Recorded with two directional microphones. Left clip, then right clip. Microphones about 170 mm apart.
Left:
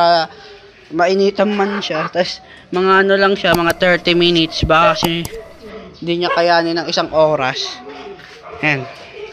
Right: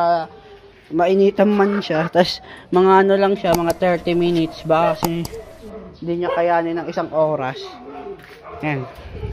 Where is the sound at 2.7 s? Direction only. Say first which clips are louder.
Left 1 dB; 20° right (ahead or behind).